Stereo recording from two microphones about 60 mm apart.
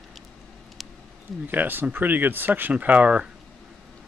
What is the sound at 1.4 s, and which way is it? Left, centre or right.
Speech, right.